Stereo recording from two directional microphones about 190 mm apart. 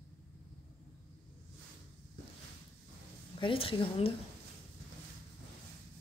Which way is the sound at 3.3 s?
30° left (ahead or behind).